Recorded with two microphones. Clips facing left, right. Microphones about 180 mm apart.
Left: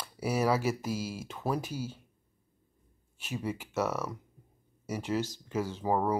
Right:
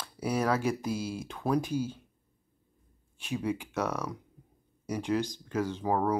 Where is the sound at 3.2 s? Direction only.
5° left (ahead or behind).